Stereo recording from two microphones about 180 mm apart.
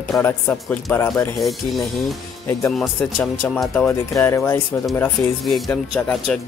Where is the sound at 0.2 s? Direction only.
10° left (ahead or behind).